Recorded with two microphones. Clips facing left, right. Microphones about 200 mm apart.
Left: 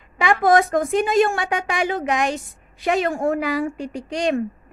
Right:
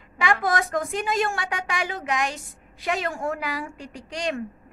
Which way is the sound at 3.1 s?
55° left (ahead or behind).